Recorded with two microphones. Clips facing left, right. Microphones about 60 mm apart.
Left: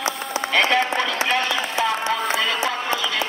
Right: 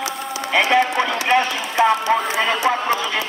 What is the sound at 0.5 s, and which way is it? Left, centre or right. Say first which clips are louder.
Clip-clop: right 3 dB; centre.